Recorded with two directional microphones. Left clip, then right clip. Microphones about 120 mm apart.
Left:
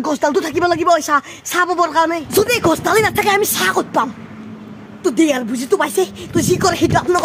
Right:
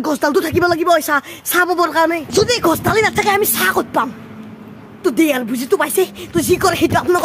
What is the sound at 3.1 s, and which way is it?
Speech, centre (ahead or behind).